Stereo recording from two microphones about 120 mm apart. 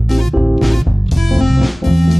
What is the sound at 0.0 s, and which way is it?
Music, centre (ahead or behind).